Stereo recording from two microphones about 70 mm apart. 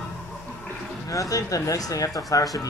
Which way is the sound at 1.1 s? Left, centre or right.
Left.